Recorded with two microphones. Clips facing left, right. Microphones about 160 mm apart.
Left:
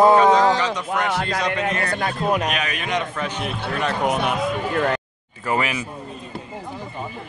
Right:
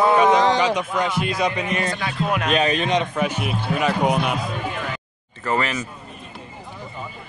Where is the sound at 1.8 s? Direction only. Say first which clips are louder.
Left 1 dB; 55° left (ahead or behind).